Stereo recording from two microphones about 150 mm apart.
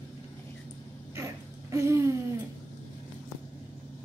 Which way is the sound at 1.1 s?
20° right (ahead or behind).